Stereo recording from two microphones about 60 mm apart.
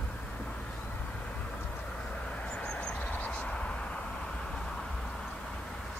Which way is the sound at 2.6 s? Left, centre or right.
Left.